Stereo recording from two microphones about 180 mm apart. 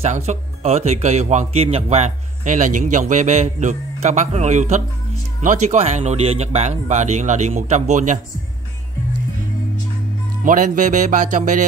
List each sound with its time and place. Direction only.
0.0 s speech: 40° right (ahead or behind)
10.4 s speech: 50° right (ahead or behind)